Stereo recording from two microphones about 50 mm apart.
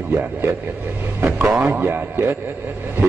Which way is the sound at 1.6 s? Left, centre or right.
Right.